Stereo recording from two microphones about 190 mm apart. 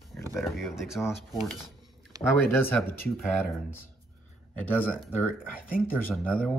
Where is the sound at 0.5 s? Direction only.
Centre (ahead or behind).